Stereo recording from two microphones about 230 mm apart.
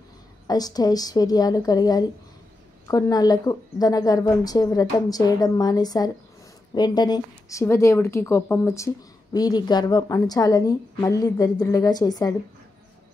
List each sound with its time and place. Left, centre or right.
0.5 s a woman's voice: centre